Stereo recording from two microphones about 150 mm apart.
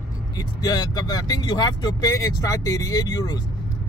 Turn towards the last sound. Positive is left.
turn(degrees=25)  # may be behind; listen again after turning